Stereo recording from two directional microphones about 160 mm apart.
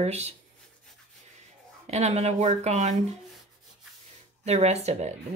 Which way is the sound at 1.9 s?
45° right (ahead or behind).